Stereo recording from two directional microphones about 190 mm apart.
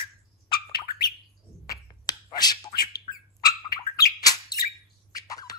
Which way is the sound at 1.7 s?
20° left (ahead or behind).